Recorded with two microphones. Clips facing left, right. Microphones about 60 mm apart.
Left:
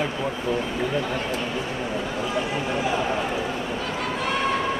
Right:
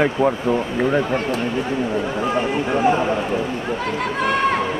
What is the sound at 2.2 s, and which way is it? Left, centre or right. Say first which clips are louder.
Speech: right 6 dB; right.